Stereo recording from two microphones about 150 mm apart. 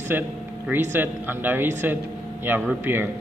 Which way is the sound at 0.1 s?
15° right (ahead or behind).